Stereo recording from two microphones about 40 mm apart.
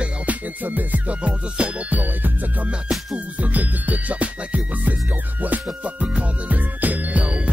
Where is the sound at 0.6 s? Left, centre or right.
Right.